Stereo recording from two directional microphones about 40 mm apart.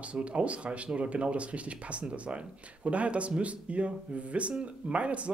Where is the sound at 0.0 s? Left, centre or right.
Right.